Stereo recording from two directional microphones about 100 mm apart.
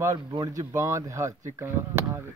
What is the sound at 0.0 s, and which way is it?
Speech, 30° right (ahead or behind).